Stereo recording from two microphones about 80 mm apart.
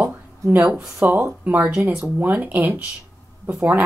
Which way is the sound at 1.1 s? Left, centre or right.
Right.